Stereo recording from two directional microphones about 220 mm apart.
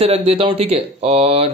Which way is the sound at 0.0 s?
25° right (ahead or behind).